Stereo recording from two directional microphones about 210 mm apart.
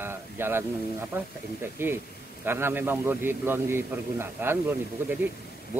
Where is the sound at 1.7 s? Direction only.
10° right (ahead or behind).